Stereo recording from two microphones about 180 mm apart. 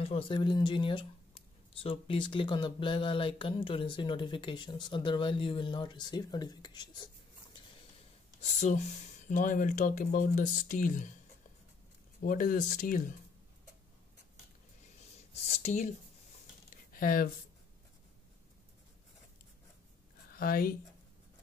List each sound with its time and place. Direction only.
0.0 s speech: 30° left (ahead or behind)
8.4 s speech: 40° left (ahead or behind)
12.2 s speech: 50° left (ahead or behind)
15.3 s speech: 35° left (ahead or behind)
16.7 s a sound: 50° left (ahead or behind)
20.3 s speech: 55° left (ahead or behind)